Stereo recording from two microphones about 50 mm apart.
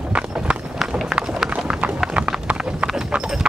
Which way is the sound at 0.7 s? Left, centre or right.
Centre.